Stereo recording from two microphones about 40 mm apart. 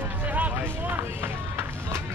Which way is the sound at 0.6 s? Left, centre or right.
Right.